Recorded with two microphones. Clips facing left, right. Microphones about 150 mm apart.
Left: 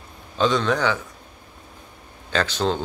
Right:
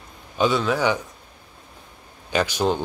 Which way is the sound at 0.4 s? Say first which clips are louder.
Even; 10° right (ahead or behind).